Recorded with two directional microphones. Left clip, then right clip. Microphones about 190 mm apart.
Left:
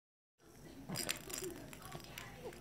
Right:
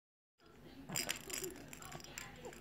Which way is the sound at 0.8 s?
15° left (ahead or behind).